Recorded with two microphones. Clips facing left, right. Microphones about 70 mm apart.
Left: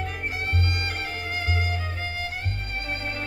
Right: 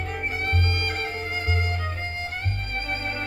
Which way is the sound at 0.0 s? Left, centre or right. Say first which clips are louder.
Right 2 dB; right.